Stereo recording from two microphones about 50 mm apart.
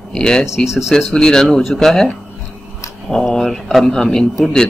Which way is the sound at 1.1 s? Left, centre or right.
Centre.